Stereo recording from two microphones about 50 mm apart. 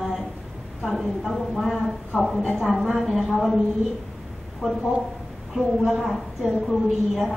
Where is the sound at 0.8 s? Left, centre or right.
Centre.